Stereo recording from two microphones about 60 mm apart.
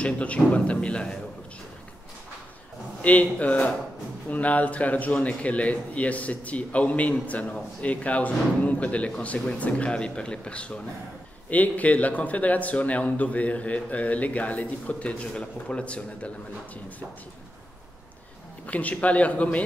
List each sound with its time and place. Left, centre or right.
0.0 s speech: left
3.0 s speech: left
18.7 s speech: left